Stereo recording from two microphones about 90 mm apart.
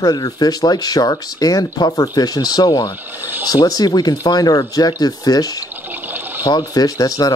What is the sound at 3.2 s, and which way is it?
Speech, 20° right (ahead or behind).